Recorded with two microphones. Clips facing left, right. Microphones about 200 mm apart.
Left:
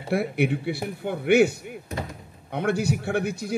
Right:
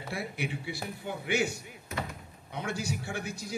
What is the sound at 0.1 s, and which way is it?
A man's voice, 60° left (ahead or behind).